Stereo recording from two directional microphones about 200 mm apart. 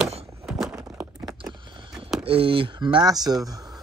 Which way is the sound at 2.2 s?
25° right (ahead or behind).